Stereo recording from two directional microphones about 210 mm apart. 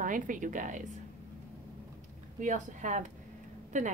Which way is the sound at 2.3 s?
35° right (ahead or behind).